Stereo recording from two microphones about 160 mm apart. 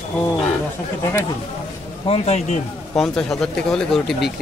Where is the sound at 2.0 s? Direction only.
40° left (ahead or behind).